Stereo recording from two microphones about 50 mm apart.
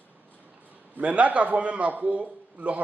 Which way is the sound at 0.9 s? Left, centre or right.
Right.